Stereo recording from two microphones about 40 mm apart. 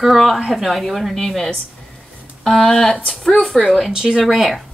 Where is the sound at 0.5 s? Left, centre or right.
Centre.